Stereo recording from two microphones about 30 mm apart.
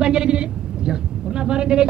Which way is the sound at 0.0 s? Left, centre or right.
Right.